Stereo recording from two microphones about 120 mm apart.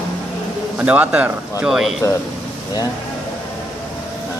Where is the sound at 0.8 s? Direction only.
15° right (ahead or behind).